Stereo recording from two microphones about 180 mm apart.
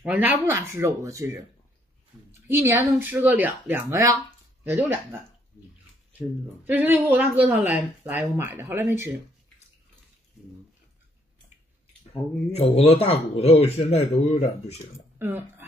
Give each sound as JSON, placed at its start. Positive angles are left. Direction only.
{"t": 0.0, "sound": "speech", "side_deg": -10}
{"t": 2.4, "sound": "speech", "side_deg": -15}
{"t": 6.1, "sound": "speech", "side_deg": -10}
{"t": 12.5, "sound": "speech", "side_deg": 35}
{"t": 15.1, "sound": "speech", "side_deg": -10}